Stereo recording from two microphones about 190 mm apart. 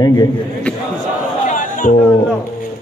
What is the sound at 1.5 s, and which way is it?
Music, 40° left (ahead or behind).